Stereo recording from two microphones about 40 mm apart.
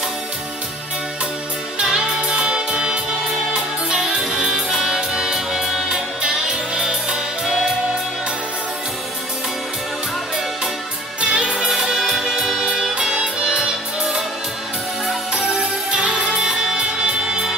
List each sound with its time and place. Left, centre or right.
1.8 s music: centre
11.2 s music: centre
13.1 s music: right
15.9 s music: right